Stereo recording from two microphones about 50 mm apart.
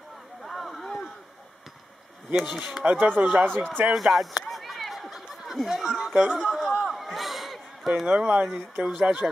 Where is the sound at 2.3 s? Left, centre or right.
Centre.